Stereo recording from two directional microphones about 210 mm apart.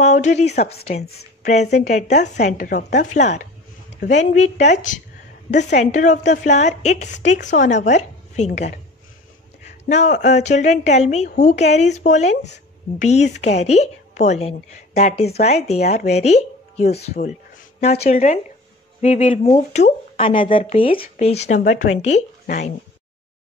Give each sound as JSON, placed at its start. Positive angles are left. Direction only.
{"t": 0.0, "sound": "a woman's voice", "side_deg": 35}
{"t": 9.8, "sound": "a woman's voice", "side_deg": 35}